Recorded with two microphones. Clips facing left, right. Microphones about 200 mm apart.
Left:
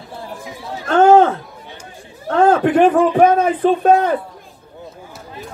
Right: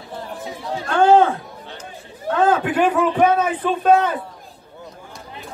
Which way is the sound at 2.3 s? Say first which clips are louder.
Left 5 dB; 40° left (ahead or behind).